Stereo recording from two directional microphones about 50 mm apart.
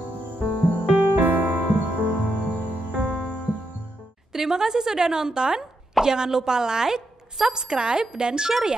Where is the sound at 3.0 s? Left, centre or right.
Centre.